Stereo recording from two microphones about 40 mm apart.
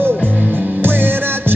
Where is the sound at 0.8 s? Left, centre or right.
Right.